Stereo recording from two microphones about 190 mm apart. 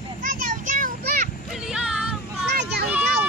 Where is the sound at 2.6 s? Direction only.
60° right (ahead or behind).